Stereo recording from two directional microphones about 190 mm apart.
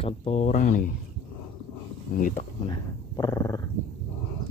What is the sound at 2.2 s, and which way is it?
Speech, 45° left (ahead or behind).